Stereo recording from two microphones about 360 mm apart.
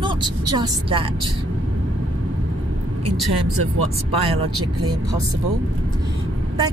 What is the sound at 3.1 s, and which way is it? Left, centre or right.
Speech, right.